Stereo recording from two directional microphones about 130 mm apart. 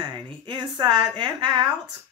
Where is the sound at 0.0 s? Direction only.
35° right (ahead or behind).